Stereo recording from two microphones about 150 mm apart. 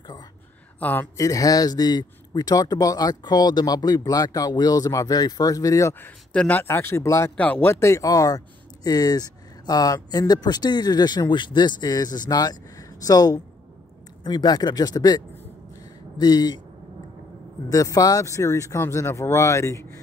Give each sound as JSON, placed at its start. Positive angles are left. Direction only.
{"t": 0.7, "sound": "speech", "side_deg": 10}
{"t": 17.6, "sound": "speech", "side_deg": 20}